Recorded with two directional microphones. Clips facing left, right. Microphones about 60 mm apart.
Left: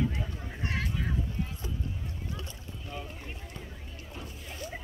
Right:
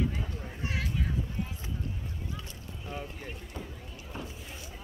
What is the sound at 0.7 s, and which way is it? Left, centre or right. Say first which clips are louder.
Fowl: left 1 dB; centre.